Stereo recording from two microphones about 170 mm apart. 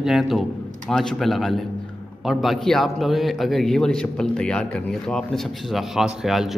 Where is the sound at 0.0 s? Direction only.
Centre (ahead or behind).